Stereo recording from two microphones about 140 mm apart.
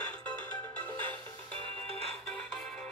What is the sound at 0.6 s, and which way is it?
Music, 15° left (ahead or behind).